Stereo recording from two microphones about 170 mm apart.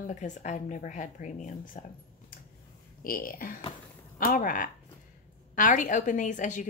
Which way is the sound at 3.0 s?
60° left (ahead or behind).